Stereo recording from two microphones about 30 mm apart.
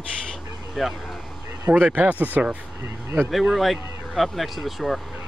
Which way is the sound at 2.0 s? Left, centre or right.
Right.